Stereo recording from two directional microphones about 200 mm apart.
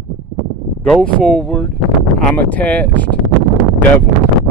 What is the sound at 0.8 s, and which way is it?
Speech, 5° left (ahead or behind).